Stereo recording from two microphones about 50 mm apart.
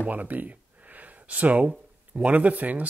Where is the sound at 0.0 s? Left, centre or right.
Right.